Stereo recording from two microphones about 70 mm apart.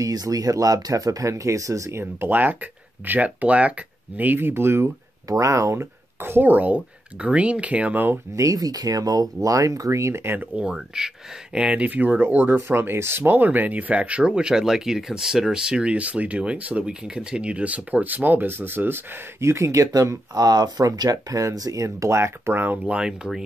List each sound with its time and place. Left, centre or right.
0.0 s speech: right
5.3 s speech: right
8.4 s speech: right
10.5 s speech: centre